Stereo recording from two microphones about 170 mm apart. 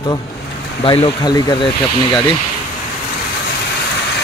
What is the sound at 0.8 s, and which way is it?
Speech, 30° left (ahead or behind).